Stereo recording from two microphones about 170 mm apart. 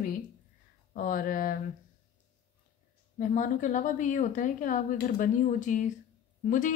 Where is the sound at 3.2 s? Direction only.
50° left (ahead or behind).